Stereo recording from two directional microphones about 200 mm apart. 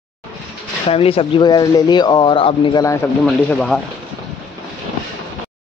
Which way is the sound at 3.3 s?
5° left (ahead or behind).